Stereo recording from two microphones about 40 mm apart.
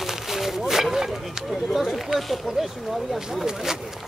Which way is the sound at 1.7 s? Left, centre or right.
Centre.